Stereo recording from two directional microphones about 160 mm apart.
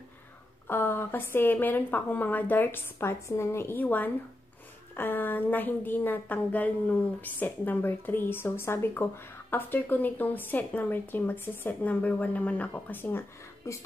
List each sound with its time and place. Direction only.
0.7 s speech: 15° left (ahead or behind)